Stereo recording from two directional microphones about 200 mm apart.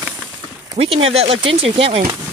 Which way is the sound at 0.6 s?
30° right (ahead or behind).